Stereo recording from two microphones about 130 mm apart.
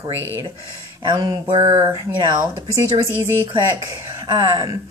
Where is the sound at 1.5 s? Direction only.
40° right (ahead or behind).